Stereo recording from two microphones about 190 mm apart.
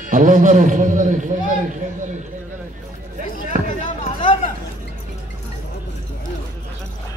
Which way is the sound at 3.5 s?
45° right (ahead or behind).